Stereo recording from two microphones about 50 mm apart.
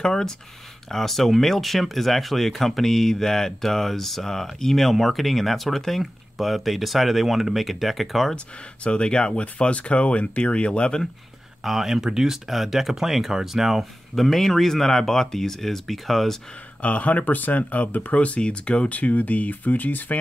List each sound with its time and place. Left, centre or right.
0.0 s speech: centre
8.8 s speech: centre
11.6 s speech: centre
16.8 s speech: left